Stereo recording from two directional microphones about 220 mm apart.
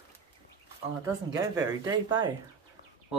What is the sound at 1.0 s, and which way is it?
Speech, 15° right (ahead or behind).